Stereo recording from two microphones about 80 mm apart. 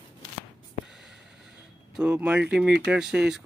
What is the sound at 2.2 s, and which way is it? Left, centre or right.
Speech, centre.